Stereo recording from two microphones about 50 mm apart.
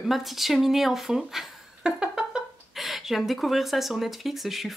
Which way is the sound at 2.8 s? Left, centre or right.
Centre.